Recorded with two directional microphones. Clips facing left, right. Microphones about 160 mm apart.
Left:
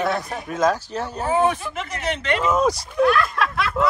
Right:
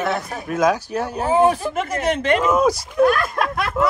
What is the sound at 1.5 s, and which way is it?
Speech, 45° right (ahead or behind).